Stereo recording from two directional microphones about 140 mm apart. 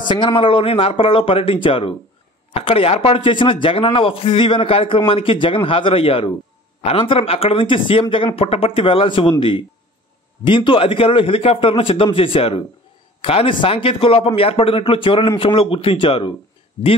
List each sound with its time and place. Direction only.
0.0 s speech: 35° left (ahead or behind)